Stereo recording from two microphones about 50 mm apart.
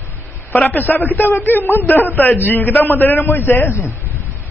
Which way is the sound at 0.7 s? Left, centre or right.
Left.